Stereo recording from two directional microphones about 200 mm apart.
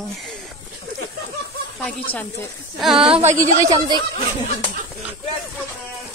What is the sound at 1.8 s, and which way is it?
A woman's voice, 10° left (ahead or behind).